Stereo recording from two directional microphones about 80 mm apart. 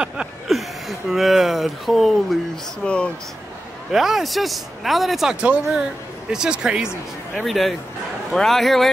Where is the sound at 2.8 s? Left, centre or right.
Centre.